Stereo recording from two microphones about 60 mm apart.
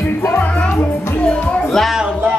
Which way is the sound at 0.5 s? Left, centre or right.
Centre.